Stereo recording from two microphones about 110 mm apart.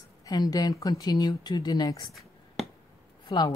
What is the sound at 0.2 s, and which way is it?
Speech, 35° left (ahead or behind).